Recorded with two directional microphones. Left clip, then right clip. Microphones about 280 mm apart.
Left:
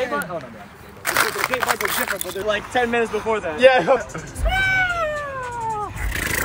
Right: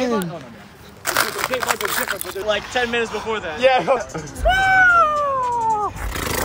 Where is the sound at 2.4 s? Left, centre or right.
Left.